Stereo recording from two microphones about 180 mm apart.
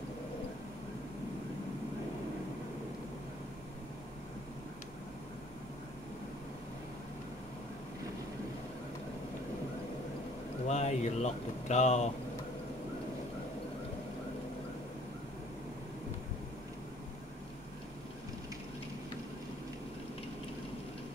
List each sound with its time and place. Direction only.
10.7 s speech: 40° left (ahead or behind)